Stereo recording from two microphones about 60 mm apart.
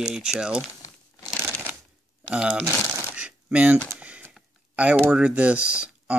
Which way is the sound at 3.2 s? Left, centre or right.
Right.